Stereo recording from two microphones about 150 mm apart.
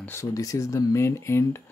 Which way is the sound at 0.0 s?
20° left (ahead or behind).